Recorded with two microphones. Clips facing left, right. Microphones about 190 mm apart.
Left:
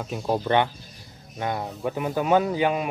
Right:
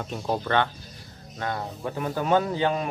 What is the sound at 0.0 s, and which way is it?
Speech, 5° left (ahead or behind).